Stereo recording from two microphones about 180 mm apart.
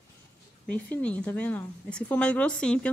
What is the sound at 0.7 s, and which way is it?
A woman's voice, 10° left (ahead or behind).